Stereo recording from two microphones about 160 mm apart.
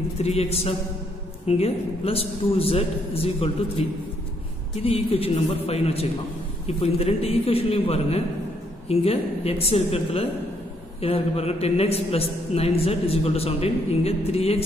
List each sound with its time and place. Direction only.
0.2 s a man's voice: 40° left (ahead or behind)
4.8 s a man's voice: 35° left (ahead or behind)